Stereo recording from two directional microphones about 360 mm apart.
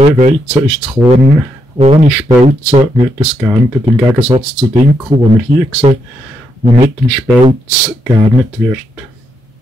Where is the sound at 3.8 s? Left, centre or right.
Centre.